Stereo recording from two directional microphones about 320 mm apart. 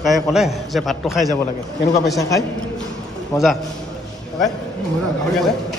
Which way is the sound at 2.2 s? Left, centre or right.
Centre.